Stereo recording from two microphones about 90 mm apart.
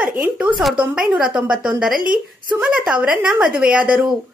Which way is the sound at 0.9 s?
10° right (ahead or behind).